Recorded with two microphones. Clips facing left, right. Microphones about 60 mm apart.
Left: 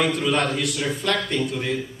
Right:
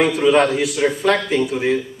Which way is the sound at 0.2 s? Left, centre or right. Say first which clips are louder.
Right 8 dB; right.